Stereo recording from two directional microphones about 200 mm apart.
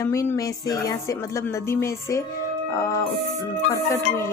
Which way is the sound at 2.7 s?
15° left (ahead or behind).